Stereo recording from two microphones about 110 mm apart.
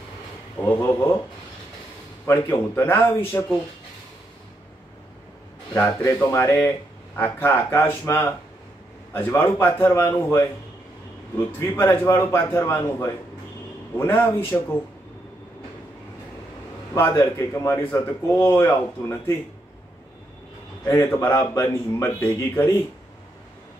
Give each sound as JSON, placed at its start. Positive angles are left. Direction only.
{"t": 0.6, "sound": "speech", "side_deg": 20}
{"t": 2.2, "sound": "speech", "side_deg": 25}
{"t": 5.7, "sound": "speech", "side_deg": 20}
{"t": 16.9, "sound": "speech", "side_deg": 25}
{"t": 20.8, "sound": "speech", "side_deg": 25}